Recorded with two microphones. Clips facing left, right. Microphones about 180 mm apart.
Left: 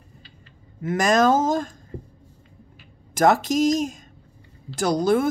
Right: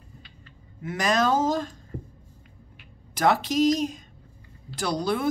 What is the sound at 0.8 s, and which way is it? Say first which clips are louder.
Speech: left 5 dB; 45° left (ahead or behind).